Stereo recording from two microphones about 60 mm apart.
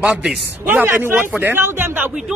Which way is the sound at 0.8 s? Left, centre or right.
Right.